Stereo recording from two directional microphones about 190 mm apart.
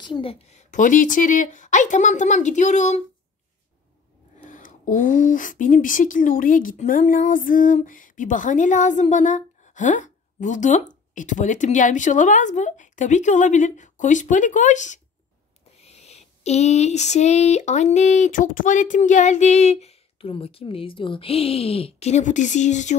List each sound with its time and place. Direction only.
0.0 s speech: 25° left (ahead or behind)
4.5 s speech: 45° left (ahead or behind)